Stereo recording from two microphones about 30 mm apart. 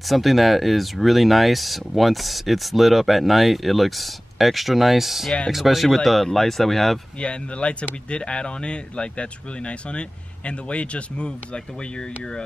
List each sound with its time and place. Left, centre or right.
0.0 s speech: centre
6.3 s speech: centre
7.2 s speech: left